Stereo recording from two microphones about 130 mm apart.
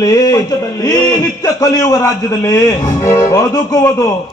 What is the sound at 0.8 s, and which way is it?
A man's voice, 25° left (ahead or behind).